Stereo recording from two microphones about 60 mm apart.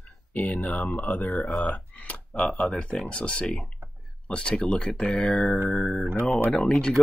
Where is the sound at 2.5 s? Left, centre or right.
Centre.